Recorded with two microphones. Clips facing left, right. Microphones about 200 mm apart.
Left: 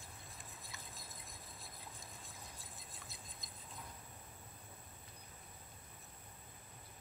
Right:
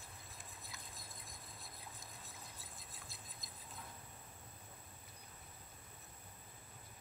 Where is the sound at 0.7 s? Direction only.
Centre (ahead or behind).